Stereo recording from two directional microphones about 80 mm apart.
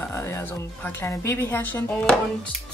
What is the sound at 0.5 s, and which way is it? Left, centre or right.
Speech, left.